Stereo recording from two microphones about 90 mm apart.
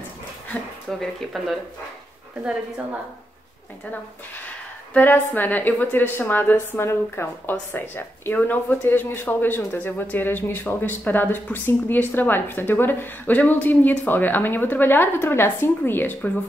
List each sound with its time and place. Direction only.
0.8 s speech: centre (ahead or behind)
4.9 s a man's voice: 20° left (ahead or behind)